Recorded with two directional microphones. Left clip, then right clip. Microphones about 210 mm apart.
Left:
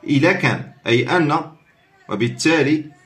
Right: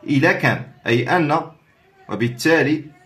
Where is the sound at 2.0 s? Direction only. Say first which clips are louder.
Left 2 dB; 20° right (ahead or behind).